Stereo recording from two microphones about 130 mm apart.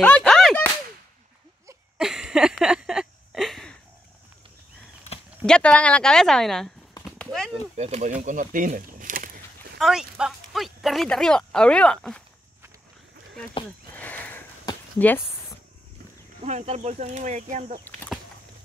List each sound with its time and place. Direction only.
0.0 s a sound: 10° left (ahead or behind)
2.0 s a sound: 5° right (ahead or behind)
5.4 s speech: 10° left (ahead or behind)
7.2 s clip-clop: 5° left (ahead or behind)
7.7 s speech: 55° right (ahead or behind); by 9.3 s 90° right
9.8 s speech: 5° right (ahead or behind)
13.9 s a sound: 10° left (ahead or behind)
15.0 s speech: 15° left (ahead or behind)
16.4 s speech: 60° right (ahead or behind)